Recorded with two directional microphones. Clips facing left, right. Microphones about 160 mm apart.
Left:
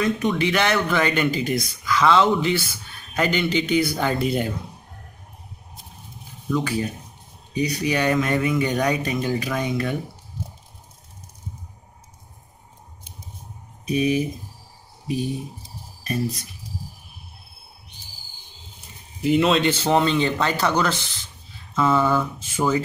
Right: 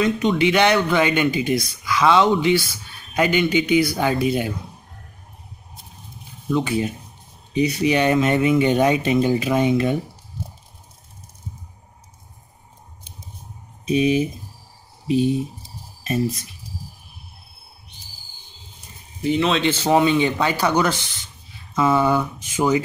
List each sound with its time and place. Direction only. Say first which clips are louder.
0.0 s speech: right 3 dB; 20° right (ahead or behind)
6.5 s speech: right 3 dB; 20° right (ahead or behind)
13.8 s speech: right 3 dB; 20° right (ahead or behind)
19.2 s speech: left 1 dB; centre (ahead or behind); by 22.8 s 15° right (ahead or behind)